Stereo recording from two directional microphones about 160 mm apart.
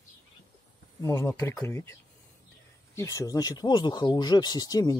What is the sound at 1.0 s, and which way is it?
Speech, 15° left (ahead or behind).